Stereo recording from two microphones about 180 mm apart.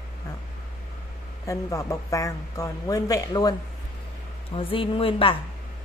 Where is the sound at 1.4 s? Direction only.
20° left (ahead or behind).